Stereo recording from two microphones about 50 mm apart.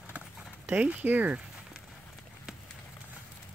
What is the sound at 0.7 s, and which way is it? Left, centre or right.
Speech, right.